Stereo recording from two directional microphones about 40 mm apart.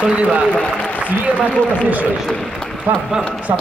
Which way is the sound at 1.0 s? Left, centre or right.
Right.